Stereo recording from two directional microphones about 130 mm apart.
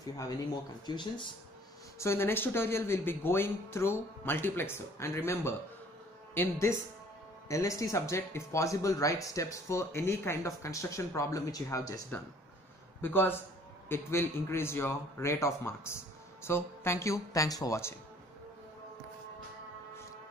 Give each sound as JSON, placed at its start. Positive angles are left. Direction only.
{"t": 0.8, "sound": "speech", "side_deg": 35}
{"t": 2.0, "sound": "speech", "side_deg": 20}
{"t": 13.0, "sound": "speech", "side_deg": 15}